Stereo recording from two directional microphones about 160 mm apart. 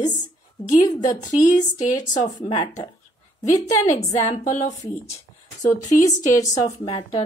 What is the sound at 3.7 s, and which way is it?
A woman's voice, 45° left (ahead or behind).